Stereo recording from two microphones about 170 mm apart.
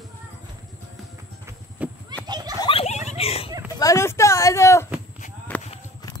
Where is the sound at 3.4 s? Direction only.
20° right (ahead or behind).